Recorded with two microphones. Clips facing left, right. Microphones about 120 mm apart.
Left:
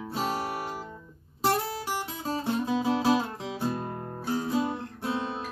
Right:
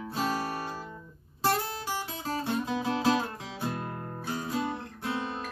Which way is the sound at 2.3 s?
20° left (ahead or behind).